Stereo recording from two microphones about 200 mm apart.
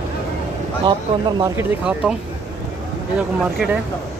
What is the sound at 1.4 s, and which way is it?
Speech, 10° right (ahead or behind).